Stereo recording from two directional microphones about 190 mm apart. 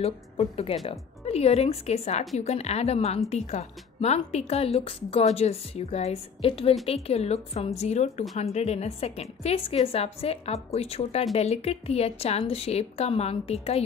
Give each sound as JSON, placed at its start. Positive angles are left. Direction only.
{"t": 0.0, "sound": "speech", "side_deg": 35}